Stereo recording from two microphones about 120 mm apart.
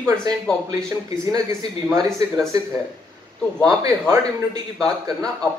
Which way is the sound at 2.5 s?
30° right (ahead or behind).